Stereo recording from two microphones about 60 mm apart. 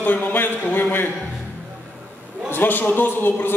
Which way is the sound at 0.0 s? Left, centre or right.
Left.